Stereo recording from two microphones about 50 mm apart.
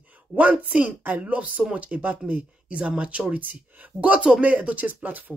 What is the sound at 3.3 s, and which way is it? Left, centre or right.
A woman's voice, right.